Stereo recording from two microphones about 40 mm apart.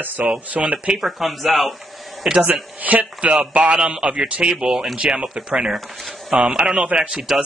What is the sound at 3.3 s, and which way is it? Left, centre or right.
Speech, right.